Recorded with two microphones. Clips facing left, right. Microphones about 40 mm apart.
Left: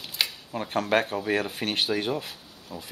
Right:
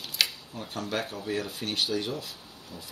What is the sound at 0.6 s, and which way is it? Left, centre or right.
Speech, left.